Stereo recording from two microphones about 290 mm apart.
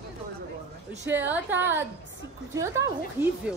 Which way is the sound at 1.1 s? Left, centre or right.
Centre.